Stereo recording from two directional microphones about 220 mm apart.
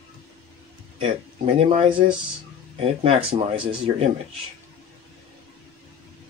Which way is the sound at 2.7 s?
25° right (ahead or behind).